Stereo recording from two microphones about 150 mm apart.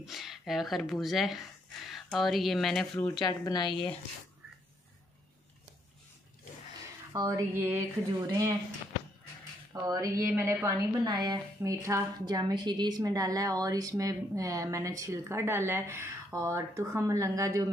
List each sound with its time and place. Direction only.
0.0 s speech: centre (ahead or behind)
3.2 s a woman's voice: 25° left (ahead or behind)
7.1 s a woman's voice: 20° right (ahead or behind)
9.7 s a woman's voice: 20° right (ahead or behind)